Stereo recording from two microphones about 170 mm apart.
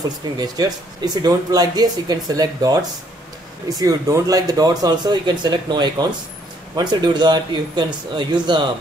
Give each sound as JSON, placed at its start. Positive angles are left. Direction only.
{"t": 0.4, "sound": "speech", "side_deg": -20}